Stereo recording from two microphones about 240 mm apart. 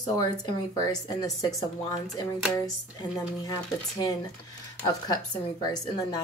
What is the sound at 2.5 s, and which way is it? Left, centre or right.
Speech, centre.